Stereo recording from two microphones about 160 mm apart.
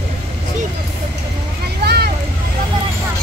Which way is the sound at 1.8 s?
85° right.